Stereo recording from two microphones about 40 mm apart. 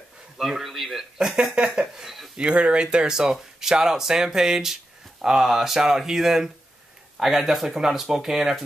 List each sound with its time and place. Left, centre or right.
0.4 s a man's voice: centre
1.1 s speech: centre